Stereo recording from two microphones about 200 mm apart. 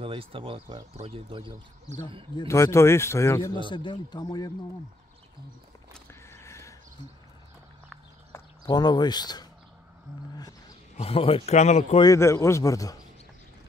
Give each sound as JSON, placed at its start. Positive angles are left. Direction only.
{"t": 0.0, "sound": "speech", "side_deg": -25}
{"t": 2.3, "sound": "speech", "side_deg": 15}
{"t": 5.9, "sound": "a sound", "side_deg": 15}
{"t": 8.3, "sound": "speech", "side_deg": 20}
{"t": 11.0, "sound": "speech", "side_deg": 30}
{"t": 12.0, "sound": "speech", "side_deg": 15}